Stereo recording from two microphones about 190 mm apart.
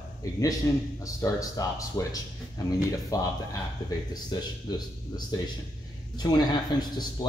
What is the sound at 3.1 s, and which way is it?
Speech, 20° left (ahead or behind).